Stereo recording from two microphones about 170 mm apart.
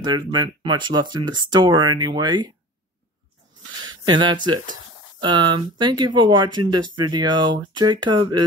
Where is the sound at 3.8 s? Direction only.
25° right (ahead or behind).